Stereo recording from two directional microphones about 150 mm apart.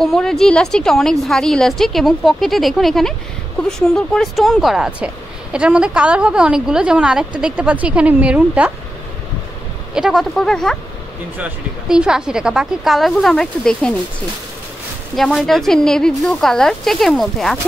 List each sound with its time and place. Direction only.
0.0 s a woman's voice: 5° left (ahead or behind)
9.9 s a woman's voice: centre (ahead or behind)
11.3 s a woman's voice: 10° right (ahead or behind)
15.1 s a woman's voice: centre (ahead or behind)